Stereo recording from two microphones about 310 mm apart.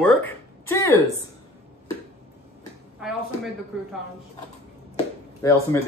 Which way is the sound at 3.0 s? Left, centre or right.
Centre.